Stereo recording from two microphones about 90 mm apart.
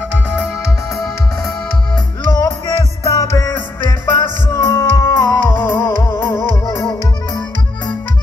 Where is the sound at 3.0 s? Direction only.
35° left (ahead or behind).